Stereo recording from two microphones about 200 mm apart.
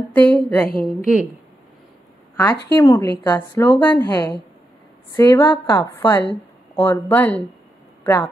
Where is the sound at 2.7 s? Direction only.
15° left (ahead or behind).